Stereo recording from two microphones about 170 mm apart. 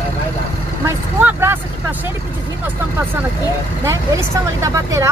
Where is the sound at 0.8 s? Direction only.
15° right (ahead or behind).